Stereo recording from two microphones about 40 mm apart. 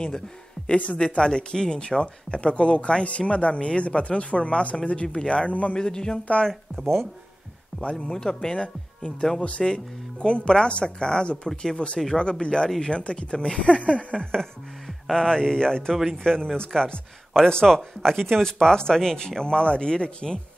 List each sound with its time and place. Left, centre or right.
0.6 s a sound: centre
0.9 s a man's voice: left
5.8 s speech: centre
6.7 s speech: centre
7.8 s speech: left
8.1 s speech: centre
12.6 s speech: centre
12.9 s speech: left
15.0 s hum: centre
15.3 s speech: centre